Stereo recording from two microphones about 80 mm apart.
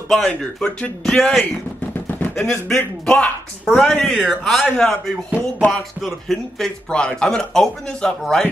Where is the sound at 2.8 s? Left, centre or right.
Centre.